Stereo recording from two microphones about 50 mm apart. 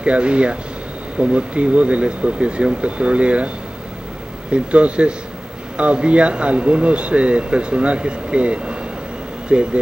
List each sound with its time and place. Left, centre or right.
0.0 s speech: right